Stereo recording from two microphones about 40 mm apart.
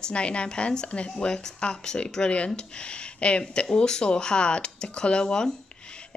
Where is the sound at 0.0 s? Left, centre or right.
Left.